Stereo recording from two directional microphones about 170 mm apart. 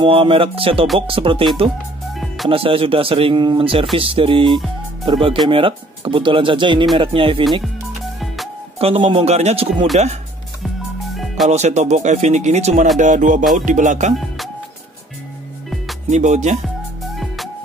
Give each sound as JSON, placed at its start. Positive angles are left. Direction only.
{"t": 0.0, "sound": "speech", "side_deg": -30}
{"t": 2.1, "sound": "music", "side_deg": 0}
{"t": 2.5, "sound": "speech", "side_deg": -35}
{"t": 8.7, "sound": "speech", "side_deg": -35}
{"t": 11.4, "sound": "speech", "side_deg": -40}
{"t": 13.0, "sound": "music", "side_deg": -45}
{"t": 16.1, "sound": "music", "side_deg": -45}
{"t": 16.6, "sound": "music", "side_deg": 0}